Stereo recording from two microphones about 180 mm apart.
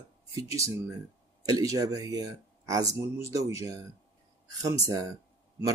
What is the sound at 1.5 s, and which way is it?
Speech, 20° right (ahead or behind).